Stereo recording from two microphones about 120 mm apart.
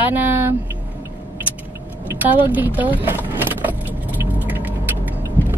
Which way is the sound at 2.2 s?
15° right (ahead or behind).